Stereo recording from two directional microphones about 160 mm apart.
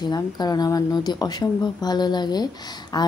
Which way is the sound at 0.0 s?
25° left (ahead or behind).